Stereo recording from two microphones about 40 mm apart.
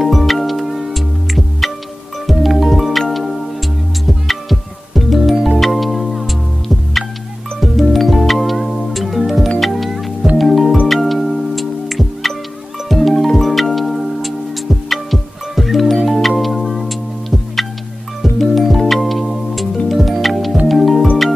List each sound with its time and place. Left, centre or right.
0.0 s music: centre
7.6 s music: centre